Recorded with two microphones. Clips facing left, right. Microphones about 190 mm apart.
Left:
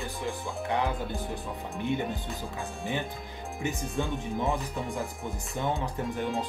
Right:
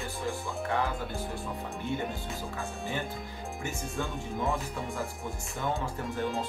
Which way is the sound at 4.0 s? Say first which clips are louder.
Left 3 dB; 20° left (ahead or behind).